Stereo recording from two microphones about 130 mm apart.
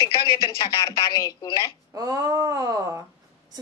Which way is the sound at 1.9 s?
25° right (ahead or behind).